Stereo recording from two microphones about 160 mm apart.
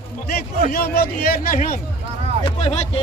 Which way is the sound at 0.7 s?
70° left (ahead or behind).